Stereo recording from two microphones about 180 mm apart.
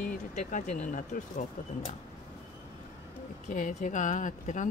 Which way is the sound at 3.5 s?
45° left (ahead or behind).